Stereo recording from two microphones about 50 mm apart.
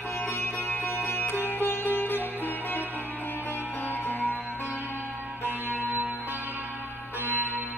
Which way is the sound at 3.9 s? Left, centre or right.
Left.